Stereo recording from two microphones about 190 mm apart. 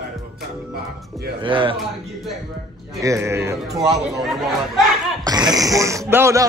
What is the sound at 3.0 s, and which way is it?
Speech, 15° right (ahead or behind).